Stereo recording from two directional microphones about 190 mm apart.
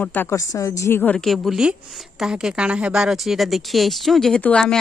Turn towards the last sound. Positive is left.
turn(degrees=5)  # may be behind; listen again after turning